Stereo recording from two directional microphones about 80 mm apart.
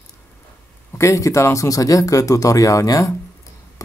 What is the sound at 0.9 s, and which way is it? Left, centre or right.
Speech, left.